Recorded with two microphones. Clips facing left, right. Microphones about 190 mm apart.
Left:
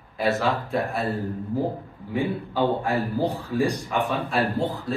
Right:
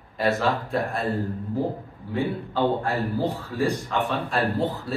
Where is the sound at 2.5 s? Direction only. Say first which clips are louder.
Left 1 dB; 15° left (ahead or behind).